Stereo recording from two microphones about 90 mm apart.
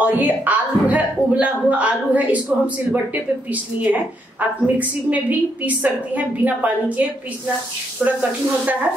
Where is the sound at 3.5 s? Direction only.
20° right (ahead or behind).